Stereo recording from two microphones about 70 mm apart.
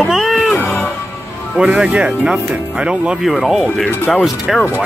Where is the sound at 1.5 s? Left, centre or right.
Centre.